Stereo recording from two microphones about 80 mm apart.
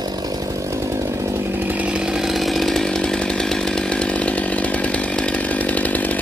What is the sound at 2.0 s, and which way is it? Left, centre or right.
Chainsaw, centre.